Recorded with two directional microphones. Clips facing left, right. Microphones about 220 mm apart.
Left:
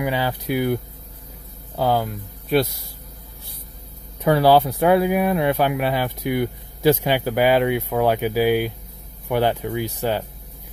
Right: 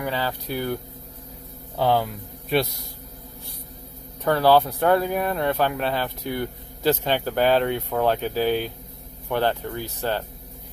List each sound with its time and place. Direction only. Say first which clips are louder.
0.0 s speech: left 4 dB; 15° left (ahead or behind)
1.8 s speech: left 1 dB; centre (ahead or behind)
4.2 s speech: left 3 dB; 10° left (ahead or behind)